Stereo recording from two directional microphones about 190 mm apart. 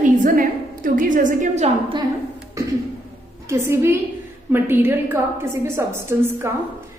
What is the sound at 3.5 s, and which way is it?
A woman's voice, 15° right (ahead or behind).